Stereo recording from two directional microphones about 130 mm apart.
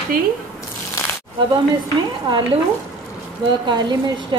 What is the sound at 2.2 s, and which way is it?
Speech, 35° right (ahead or behind).